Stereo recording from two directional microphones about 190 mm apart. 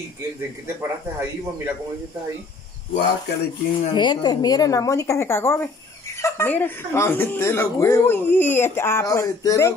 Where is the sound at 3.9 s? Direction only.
25° left (ahead or behind).